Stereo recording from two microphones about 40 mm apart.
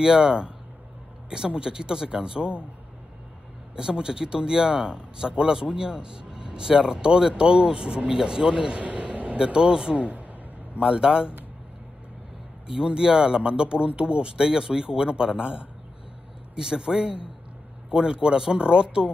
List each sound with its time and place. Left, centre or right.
0.0 s a man's voice: centre
3.7 s a man's voice: centre
8.8 s a sound: right
9.4 s a man's voice: right
9.9 s speech: right
10.8 s a man's voice: right
12.7 s a man's voice: centre